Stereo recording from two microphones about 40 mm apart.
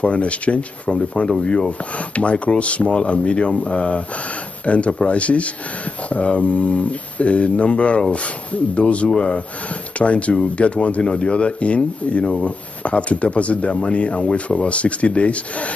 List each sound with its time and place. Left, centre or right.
0.0 s speech: left
0.9 s speech: centre